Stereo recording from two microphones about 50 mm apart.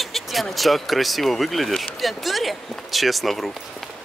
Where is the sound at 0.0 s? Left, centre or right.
Centre.